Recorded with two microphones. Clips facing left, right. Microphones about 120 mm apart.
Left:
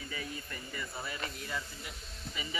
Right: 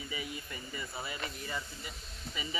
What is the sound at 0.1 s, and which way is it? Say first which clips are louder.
Speech: right 1 dB; 10° right (ahead or behind).